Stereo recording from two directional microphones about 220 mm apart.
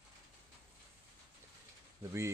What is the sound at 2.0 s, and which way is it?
Speech, 15° right (ahead or behind).